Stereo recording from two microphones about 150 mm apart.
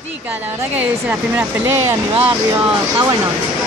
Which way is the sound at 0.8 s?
10° right (ahead or behind).